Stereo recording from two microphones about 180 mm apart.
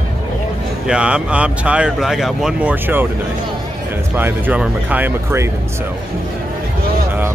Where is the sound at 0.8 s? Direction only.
5° right (ahead or behind).